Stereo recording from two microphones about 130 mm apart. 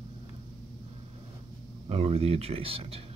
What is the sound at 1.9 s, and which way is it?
Speech, 50° right (ahead or behind).